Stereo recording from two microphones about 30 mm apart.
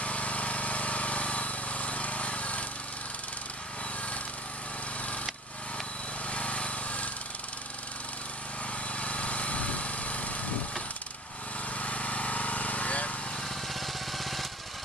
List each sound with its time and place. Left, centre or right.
0.0 s vehicle: left
6.3 s vehicle: left
8.9 s lawn mower: left
11.7 s vehicle: left
13.7 s vehicle: centre